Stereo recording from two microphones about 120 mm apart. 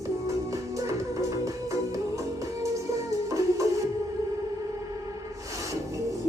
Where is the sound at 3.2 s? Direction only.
25° right (ahead or behind).